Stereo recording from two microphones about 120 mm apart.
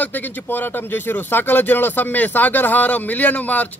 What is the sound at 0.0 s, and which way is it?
Speech, 15° left (ahead or behind).